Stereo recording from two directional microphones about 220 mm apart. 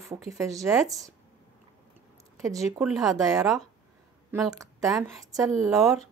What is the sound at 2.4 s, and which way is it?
Speech, 15° right (ahead or behind).